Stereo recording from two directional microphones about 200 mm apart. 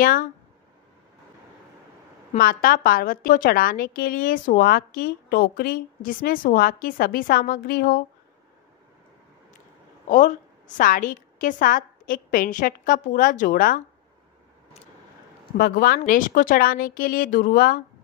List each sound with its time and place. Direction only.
0.0 s a woman's voice: 45° left (ahead or behind)
2.3 s a woman's voice: 45° left (ahead or behind)
10.0 s a woman's voice: 40° left (ahead or behind)
15.5 s a woman's voice: 45° left (ahead or behind)